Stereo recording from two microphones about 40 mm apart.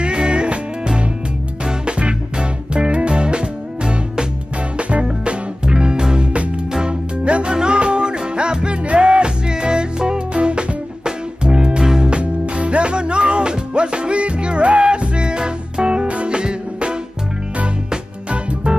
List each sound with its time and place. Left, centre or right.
0.0 s music: right
4.7 s music: right
18.3 s music: right